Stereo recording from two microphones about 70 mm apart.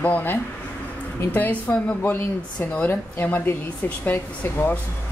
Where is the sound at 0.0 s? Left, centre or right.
Left.